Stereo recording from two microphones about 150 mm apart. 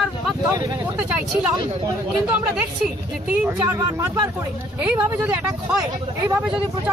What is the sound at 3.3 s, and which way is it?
Speech, 15° right (ahead or behind).